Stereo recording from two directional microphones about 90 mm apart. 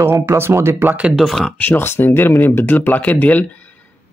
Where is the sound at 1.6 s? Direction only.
25° left (ahead or behind).